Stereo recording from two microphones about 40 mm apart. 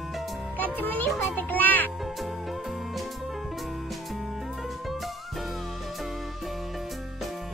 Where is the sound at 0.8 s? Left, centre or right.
Left.